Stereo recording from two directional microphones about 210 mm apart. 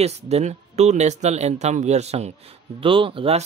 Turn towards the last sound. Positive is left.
turn(degrees=-25)  # may be behind; listen again after turning